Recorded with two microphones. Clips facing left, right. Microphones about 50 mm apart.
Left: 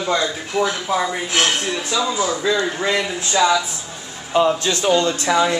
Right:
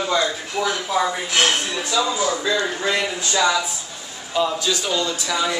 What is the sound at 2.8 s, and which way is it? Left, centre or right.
A man's voice, left.